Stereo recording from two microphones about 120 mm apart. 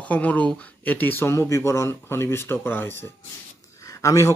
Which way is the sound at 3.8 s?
25° left (ahead or behind).